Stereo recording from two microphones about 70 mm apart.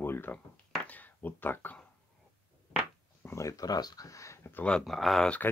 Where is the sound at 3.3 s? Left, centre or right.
Left.